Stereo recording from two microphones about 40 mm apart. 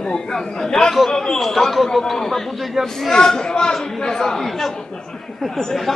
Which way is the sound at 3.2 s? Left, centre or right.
Centre.